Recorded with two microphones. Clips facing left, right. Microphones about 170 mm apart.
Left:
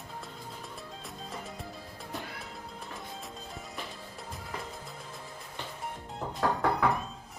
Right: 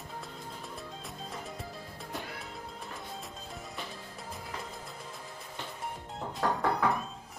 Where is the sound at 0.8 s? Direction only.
Centre (ahead or behind).